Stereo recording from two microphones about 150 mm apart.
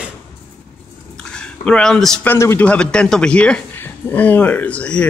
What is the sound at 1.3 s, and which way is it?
Speech, 5° left (ahead or behind).